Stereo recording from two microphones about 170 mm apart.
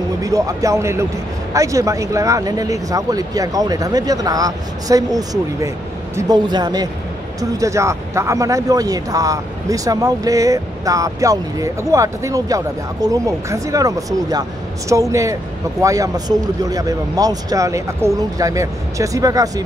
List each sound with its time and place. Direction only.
0.2 s speech: 20° right (ahead or behind)